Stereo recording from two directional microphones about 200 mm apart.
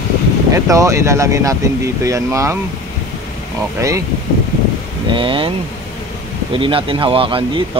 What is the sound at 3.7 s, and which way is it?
Speech, 15° right (ahead or behind).